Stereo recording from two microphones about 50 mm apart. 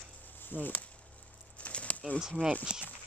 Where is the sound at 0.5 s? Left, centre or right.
Left.